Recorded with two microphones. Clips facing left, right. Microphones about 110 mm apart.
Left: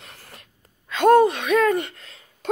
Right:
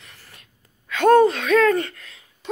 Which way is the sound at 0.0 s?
60° left (ahead or behind).